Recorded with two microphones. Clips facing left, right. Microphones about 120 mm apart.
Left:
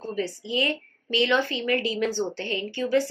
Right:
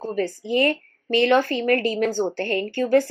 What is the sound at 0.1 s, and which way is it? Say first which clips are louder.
A woman's voice: right 5 dB; 50° right (ahead or behind).